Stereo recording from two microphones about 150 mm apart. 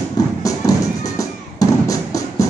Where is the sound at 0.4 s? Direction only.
20° left (ahead or behind).